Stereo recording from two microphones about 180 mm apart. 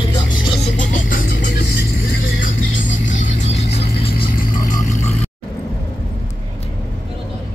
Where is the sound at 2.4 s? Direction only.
50° left (ahead or behind).